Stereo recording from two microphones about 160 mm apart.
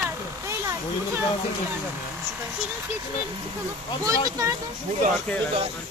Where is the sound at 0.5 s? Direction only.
15° right (ahead or behind).